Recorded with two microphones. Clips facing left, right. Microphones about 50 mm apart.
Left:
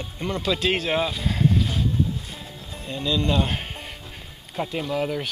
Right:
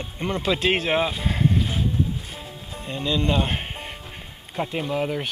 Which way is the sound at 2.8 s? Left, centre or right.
Centre.